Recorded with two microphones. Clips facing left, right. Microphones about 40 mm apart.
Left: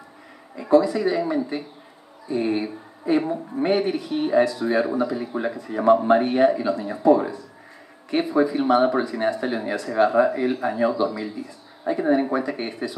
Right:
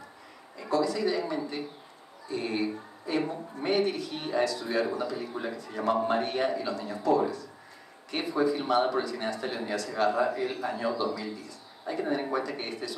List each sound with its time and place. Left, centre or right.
0.6 s a woman's voice: left